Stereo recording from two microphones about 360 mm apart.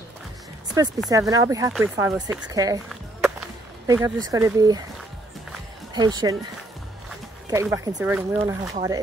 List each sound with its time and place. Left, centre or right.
0.7 s speech: centre
5.9 s speech: centre
7.4 s speech: centre